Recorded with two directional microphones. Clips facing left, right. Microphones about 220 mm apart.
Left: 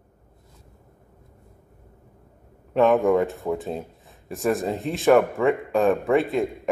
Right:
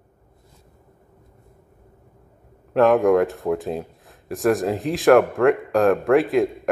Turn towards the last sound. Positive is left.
turn(degrees=0)  # may be behind; listen again after turning